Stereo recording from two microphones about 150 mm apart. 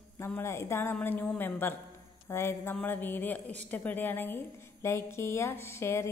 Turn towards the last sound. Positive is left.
turn(degrees=15)  # may be behind; listen again after turning